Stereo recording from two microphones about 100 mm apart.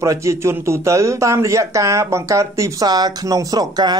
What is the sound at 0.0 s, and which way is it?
Speech, 30° right (ahead or behind).